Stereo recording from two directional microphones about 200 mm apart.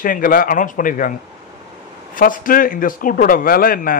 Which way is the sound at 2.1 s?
45° left (ahead or behind).